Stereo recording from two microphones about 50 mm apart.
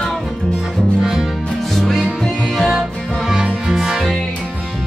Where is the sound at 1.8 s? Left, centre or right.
Centre.